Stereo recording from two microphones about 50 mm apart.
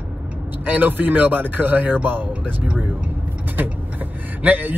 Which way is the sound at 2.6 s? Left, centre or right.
Right.